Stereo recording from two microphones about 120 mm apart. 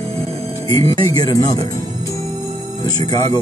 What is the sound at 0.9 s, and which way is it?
Speech, 30° left (ahead or behind).